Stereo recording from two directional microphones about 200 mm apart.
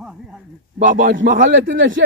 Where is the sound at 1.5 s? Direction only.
65° right (ahead or behind).